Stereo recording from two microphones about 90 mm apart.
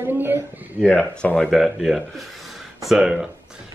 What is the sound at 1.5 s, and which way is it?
Speech, centre (ahead or behind).